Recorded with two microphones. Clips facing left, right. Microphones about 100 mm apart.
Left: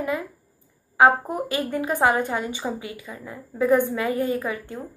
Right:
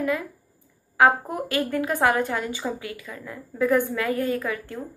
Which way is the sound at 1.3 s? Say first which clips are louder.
Even; 15° left (ahead or behind).